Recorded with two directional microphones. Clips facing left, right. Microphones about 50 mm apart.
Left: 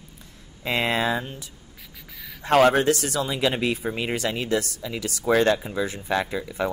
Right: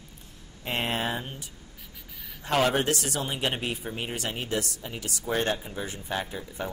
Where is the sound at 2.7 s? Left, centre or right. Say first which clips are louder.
Left 5 dB; left.